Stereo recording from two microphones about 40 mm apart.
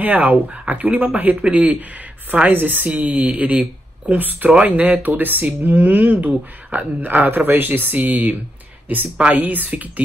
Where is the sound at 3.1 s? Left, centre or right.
Right.